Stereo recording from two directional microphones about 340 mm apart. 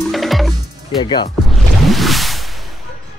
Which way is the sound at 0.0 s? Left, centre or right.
Centre.